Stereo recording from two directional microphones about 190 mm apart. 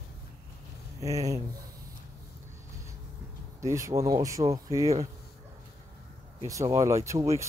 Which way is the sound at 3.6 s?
15° right (ahead or behind).